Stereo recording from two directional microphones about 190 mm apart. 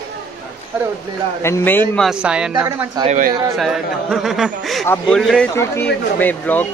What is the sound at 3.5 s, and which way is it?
A man's voice, centre (ahead or behind).